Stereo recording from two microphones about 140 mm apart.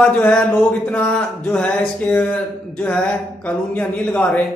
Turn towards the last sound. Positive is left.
turn(degrees=10)  # may be behind; listen again after turning